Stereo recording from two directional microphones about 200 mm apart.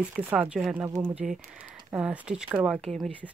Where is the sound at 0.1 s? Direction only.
10° right (ahead or behind).